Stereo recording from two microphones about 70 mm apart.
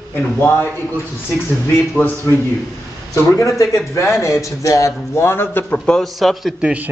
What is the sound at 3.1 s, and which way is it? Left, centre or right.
A man's voice, left.